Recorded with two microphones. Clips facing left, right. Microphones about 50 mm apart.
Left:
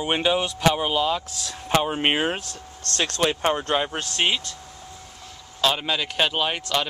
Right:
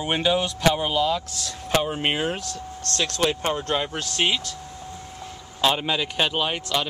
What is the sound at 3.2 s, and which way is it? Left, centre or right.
Speech, centre.